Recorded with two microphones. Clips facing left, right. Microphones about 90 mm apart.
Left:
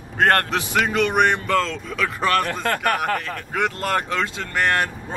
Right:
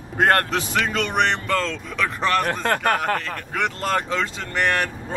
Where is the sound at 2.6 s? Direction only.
25° right (ahead or behind).